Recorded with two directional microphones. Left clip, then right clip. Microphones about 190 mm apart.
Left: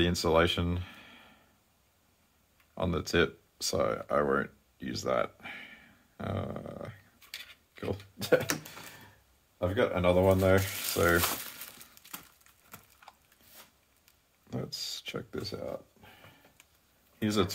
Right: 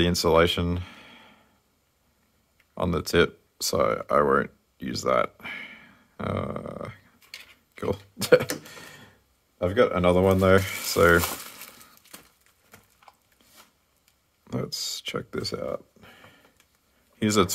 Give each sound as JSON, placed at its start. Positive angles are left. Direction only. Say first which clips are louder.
{"t": 0.0, "sound": "speech", "louder": "right 6 dB", "side_deg": -30}
{"t": 2.7, "sound": "speech", "louder": "right 6 dB", "side_deg": -30}
{"t": 7.7, "sound": "a sound", "louder": "right 8 dB", "side_deg": -45}
{"t": 9.6, "sound": "speech", "louder": "right 7 dB", "side_deg": -60}
{"t": 13.0, "sound": "a sound", "louder": "right 2 dB", "side_deg": 5}
{"t": 14.5, "sound": "speech", "louder": "right 6 dB", "side_deg": -40}
{"t": 17.2, "sound": "speech", "louder": "right 7 dB", "side_deg": -50}